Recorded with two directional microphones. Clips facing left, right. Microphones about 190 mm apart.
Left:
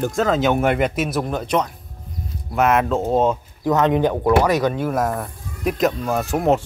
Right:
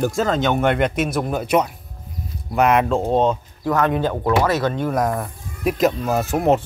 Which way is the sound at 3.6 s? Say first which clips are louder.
Left 2 dB; 20° left (ahead or behind).